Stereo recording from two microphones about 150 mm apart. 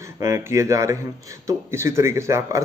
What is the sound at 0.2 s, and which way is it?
Speech, 20° right (ahead or behind).